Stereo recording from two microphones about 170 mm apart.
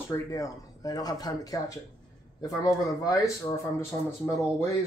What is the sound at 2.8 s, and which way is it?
Speech, 20° left (ahead or behind).